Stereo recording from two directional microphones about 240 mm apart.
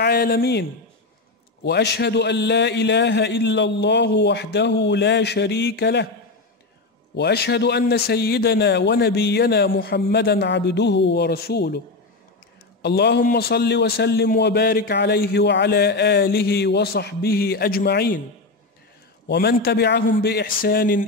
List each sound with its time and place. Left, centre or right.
0.0 s a man's voice: left
7.2 s a man's voice: left
12.8 s a man's voice: left
19.2 s a man's voice: left